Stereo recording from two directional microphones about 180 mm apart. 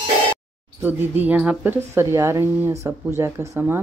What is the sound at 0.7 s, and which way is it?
Speech, 10° right (ahead or behind).